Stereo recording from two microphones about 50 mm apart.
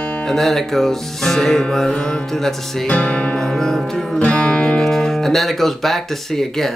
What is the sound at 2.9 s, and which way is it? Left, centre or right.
Music, left.